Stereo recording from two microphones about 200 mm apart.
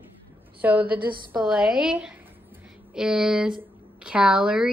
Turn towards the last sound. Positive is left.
turn(degrees=-5)  # may be behind; listen again after turning